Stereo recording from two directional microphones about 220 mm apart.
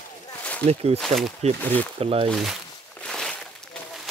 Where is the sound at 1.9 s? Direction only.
25° right (ahead or behind).